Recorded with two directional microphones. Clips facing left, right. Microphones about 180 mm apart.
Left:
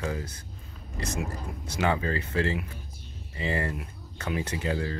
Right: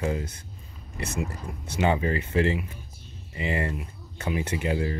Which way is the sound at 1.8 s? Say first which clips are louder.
Right 3 dB; 20° right (ahead or behind).